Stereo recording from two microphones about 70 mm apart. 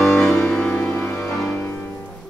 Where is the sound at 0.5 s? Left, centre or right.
Centre.